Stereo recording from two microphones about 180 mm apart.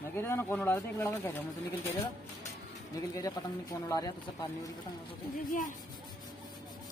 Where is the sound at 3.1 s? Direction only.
20° left (ahead or behind).